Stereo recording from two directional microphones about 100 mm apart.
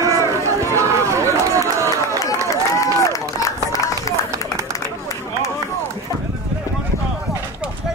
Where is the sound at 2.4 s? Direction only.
30° left (ahead or behind).